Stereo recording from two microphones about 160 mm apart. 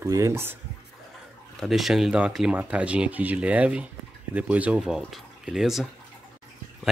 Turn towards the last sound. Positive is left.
turn(degrees=0)  # may be behind; listen again after turning